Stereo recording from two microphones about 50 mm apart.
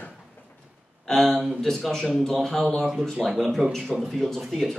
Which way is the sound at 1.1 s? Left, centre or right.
Centre.